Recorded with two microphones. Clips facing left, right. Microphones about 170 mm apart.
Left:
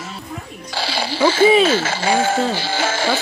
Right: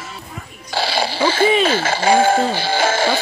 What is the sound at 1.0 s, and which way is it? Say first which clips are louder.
Speech: left 6 dB; 15° right (ahead or behind).